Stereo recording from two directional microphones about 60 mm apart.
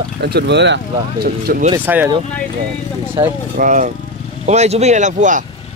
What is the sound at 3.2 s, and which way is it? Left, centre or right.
Speech, right.